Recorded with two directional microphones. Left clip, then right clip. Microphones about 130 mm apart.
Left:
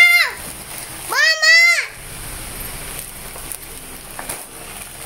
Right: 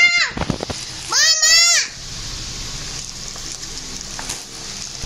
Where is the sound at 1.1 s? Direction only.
20° left (ahead or behind).